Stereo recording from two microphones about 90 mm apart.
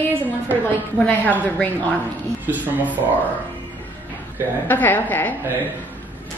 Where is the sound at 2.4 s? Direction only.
20° right (ahead or behind).